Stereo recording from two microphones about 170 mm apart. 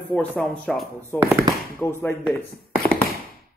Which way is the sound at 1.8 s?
15° left (ahead or behind).